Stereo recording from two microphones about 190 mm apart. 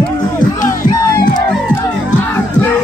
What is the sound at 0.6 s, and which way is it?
Music, 15° left (ahead or behind).